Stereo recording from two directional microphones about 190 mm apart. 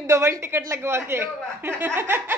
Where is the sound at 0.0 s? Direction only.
15° right (ahead or behind).